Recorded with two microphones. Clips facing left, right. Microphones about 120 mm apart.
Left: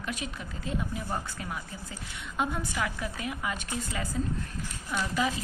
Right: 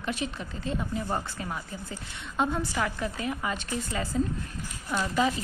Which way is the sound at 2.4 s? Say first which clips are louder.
Right 3 dB; 10° left (ahead or behind).